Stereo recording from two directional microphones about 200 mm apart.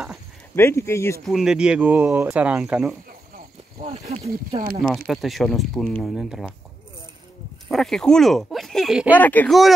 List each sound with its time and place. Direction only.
0.6 s speech: 15° left (ahead or behind)
1.2 s speech: centre (ahead or behind)
3.8 s speech: 25° right (ahead or behind)
4.8 s speech: centre (ahead or behind)
7.6 s speech: centre (ahead or behind)